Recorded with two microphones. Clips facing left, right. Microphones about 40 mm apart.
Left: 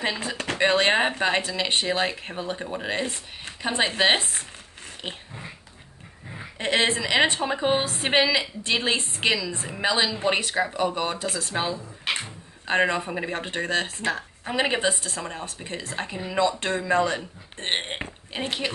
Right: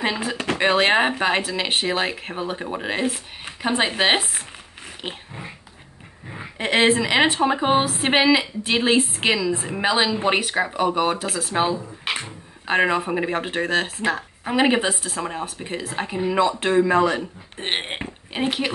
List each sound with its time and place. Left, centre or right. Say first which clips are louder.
0.2 s speech: right 2 dB; centre
6.3 s a woman's voice: right 3 dB; right
7.5 s a woman's voice: right 4 dB; right
7.8 s speech: right 4 dB; centre
8.1 s a woman's voice: right 3 dB; centre
11.2 s a woman's voice: right 5 dB; centre